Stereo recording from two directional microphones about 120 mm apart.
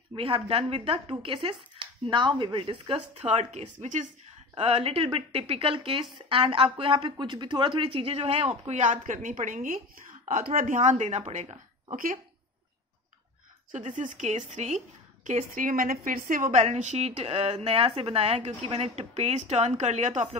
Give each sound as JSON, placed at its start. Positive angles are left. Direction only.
{"t": 0.1, "sound": "a woman's voice", "side_deg": -50}
{"t": 4.6, "sound": "a woman's voice", "side_deg": -55}
{"t": 13.7, "sound": "a woman's voice", "side_deg": -90}
{"t": 15.2, "sound": "a woman's voice", "side_deg": -90}
{"t": 16.4, "sound": "a woman's voice", "side_deg": -75}